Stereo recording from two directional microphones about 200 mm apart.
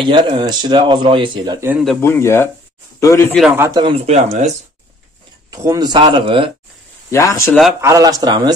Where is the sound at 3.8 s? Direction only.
30° right (ahead or behind).